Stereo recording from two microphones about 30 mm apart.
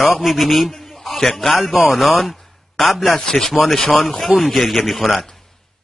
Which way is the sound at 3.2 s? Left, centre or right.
Centre.